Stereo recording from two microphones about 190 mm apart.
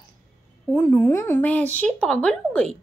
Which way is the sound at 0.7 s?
10° left (ahead or behind).